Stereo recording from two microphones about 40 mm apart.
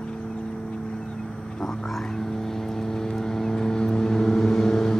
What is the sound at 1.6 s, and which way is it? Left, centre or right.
Vehicle, centre.